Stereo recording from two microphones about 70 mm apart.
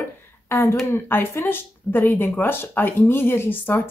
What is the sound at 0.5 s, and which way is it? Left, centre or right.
Speech, left.